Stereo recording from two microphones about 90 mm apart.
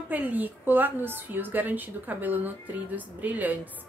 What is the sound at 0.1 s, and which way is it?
A woman's voice, 20° right (ahead or behind).